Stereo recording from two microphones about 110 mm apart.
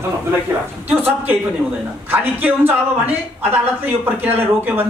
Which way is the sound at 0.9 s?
20° right (ahead or behind).